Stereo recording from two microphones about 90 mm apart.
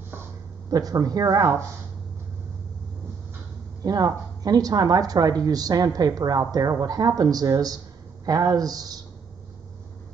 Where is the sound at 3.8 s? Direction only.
45° right (ahead or behind).